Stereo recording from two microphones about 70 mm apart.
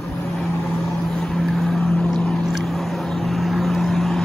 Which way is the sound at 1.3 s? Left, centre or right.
Centre.